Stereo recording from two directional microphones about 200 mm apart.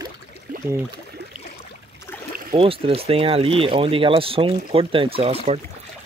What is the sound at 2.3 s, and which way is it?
Boat, 45° right (ahead or behind).